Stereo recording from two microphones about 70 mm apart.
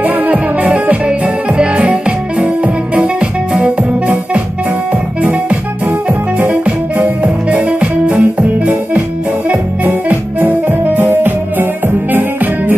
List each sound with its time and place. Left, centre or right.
0.0 s music: centre
9.8 s music: right